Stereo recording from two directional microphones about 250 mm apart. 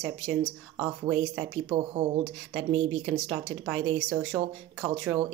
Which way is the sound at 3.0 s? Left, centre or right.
Right.